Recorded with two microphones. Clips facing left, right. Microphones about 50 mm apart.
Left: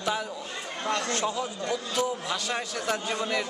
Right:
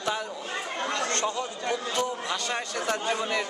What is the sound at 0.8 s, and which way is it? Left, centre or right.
Speech, right.